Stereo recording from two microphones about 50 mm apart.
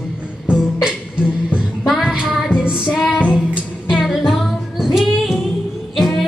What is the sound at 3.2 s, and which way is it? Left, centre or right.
Female singing, right.